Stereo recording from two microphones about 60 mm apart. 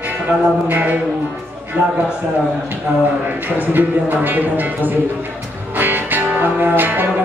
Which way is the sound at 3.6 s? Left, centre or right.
Right.